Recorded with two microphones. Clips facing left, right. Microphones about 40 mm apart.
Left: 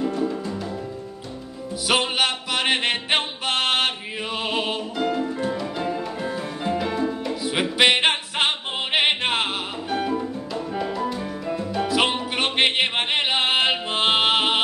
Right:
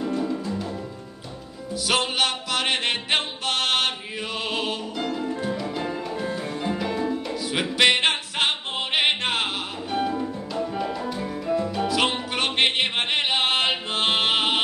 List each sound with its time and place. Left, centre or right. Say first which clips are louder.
0.2 s music: left 1 dB; centre
1.9 s music: left 2 dB; centre